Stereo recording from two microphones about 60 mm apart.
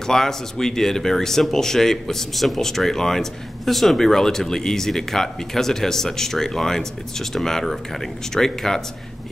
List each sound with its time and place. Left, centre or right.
0.0 s speech: centre